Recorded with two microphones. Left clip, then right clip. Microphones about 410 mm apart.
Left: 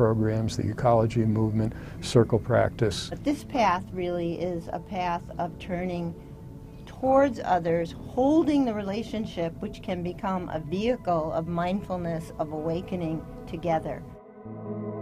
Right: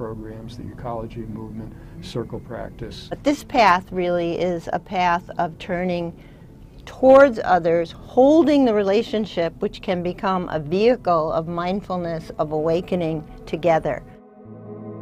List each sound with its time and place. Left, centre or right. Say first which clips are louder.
0.0 s speech: left 8 dB; left
3.3 s speech: right 9 dB; right
7.2 s speech: right 9 dB; right
12.6 s a woman's voice: right 9 dB; right